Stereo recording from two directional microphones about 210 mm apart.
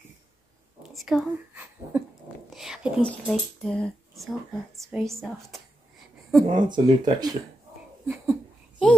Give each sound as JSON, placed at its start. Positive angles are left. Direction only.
{"t": 0.8, "sound": "a woman's voice", "side_deg": 0}
{"t": 6.4, "sound": "speech", "side_deg": -20}
{"t": 8.1, "sound": "babbling", "side_deg": 0}